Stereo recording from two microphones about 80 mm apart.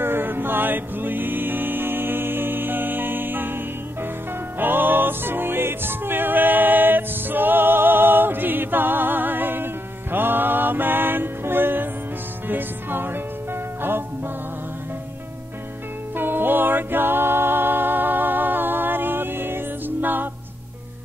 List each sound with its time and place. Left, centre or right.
0.0 s music: right
16.2 s music: right